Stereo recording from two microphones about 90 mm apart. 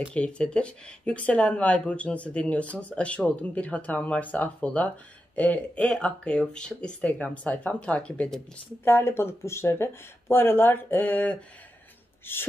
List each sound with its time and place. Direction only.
0.1 s speech: 10° left (ahead or behind)
8.8 s speech: 25° left (ahead or behind)